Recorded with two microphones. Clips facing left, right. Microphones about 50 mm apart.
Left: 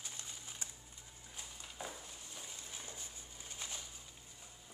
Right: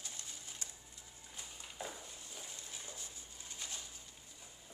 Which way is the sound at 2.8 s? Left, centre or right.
Left.